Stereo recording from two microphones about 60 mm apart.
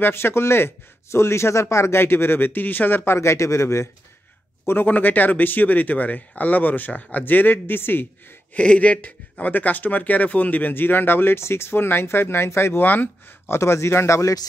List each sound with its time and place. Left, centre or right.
0.0 s speech: left
3.2 s speech: left
4.6 s speech: left
8.5 s speech: left
13.5 s speech: left